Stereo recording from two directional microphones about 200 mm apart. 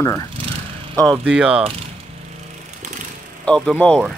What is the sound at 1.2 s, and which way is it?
Speech, 5° right (ahead or behind).